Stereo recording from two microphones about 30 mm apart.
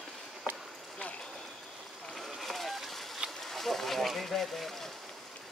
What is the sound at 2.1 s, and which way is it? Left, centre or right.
Vehicle, centre.